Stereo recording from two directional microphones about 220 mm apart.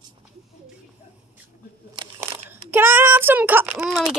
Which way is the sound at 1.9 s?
20° right (ahead or behind).